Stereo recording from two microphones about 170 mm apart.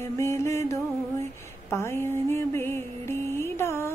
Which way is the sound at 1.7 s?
15° left (ahead or behind).